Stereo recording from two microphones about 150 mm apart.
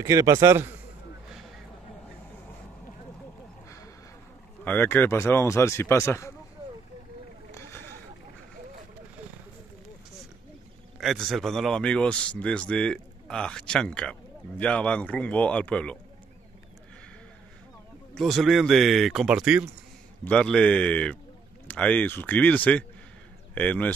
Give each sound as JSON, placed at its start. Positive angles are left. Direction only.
{"t": 0.0, "sound": "a man's voice", "side_deg": -20}
{"t": 4.6, "sound": "speech", "side_deg": 10}
{"t": 7.5, "sound": "a sound", "side_deg": 15}
{"t": 11.0, "sound": "a man's voice", "side_deg": 0}
{"t": 18.1, "sound": "a man's voice", "side_deg": 0}
{"t": 20.2, "sound": "speech", "side_deg": 5}